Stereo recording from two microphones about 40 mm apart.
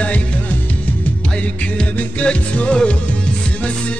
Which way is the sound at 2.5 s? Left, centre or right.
Left.